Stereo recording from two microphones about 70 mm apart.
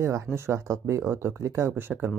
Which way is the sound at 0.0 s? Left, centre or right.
Right.